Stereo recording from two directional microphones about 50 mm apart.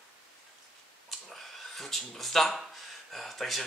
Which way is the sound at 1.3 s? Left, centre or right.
Centre.